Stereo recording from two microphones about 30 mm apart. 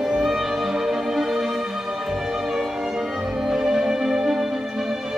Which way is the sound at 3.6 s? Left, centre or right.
Centre.